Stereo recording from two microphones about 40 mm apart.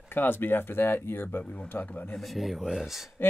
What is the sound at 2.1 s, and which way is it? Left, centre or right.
Speech, centre.